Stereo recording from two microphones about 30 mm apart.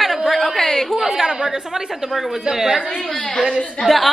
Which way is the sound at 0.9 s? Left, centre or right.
Centre.